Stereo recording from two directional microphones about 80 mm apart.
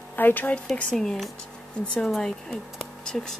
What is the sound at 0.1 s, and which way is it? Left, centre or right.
Speech, left.